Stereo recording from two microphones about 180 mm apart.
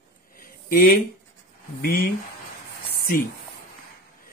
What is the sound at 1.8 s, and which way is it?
Speech, 55° left (ahead or behind).